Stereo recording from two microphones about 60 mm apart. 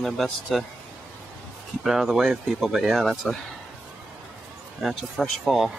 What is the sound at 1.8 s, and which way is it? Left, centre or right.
Speech, centre.